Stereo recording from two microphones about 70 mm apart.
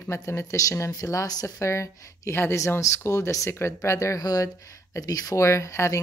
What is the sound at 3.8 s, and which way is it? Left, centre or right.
Speech, left.